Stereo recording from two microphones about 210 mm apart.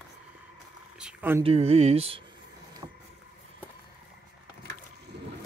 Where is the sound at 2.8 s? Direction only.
20° right (ahead or behind).